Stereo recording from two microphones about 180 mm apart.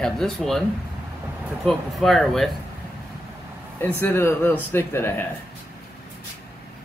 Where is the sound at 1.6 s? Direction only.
Centre (ahead or behind).